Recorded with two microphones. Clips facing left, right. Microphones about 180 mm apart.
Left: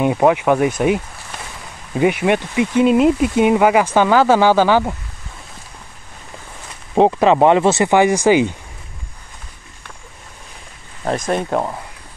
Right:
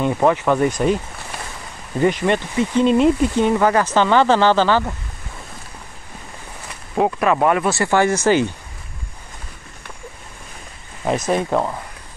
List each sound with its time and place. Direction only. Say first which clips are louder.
0.0 s speech: left 3 dB; 15° left (ahead or behind)
7.0 s speech: left 5 dB; 25° left (ahead or behind)
11.1 s speech: even; 5° right (ahead or behind)